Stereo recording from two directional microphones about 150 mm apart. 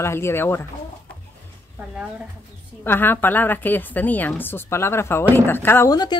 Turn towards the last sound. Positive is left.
turn(degrees=30)  # may be behind; listen again after turning